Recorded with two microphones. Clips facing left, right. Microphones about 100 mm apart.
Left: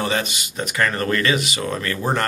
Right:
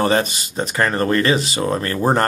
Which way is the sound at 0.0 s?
40° right (ahead or behind).